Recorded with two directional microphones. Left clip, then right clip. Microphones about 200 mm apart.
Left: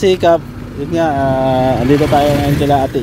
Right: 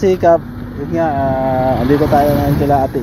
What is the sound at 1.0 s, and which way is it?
Speech, 40° left (ahead or behind).